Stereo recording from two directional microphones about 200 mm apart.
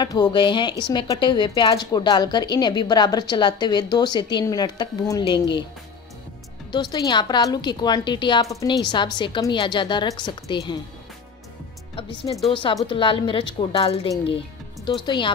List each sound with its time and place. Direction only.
0.0 s a woman's voice: 20° left (ahead or behind)
6.7 s a woman's voice: 20° left (ahead or behind)
12.4 s a woman's voice: 25° left (ahead or behind)